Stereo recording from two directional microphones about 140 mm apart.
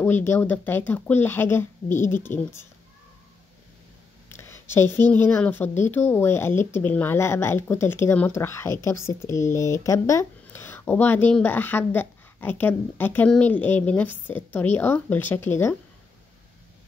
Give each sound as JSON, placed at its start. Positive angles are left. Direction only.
{"t": 0.0, "sound": "speech", "side_deg": 15}
{"t": 4.3, "sound": "speech", "side_deg": 20}